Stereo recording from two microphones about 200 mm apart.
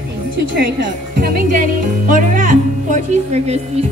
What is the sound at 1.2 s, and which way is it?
Music, 45° right (ahead or behind).